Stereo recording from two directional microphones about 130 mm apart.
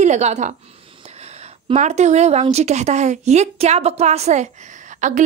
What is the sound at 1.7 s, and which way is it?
A woman's voice, 60° right (ahead or behind).